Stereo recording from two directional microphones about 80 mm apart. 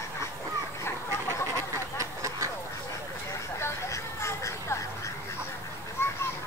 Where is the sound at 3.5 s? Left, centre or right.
Left.